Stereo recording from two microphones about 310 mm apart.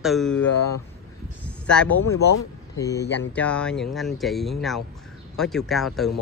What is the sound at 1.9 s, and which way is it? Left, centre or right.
Speech, left.